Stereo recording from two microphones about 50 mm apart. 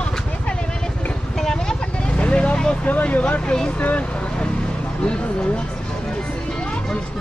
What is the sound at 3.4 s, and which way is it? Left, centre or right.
Speech, centre.